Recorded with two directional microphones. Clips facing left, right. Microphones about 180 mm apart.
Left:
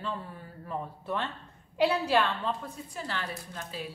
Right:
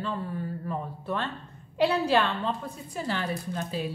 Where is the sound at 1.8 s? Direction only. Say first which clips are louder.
Right 2 dB; 5° left (ahead or behind).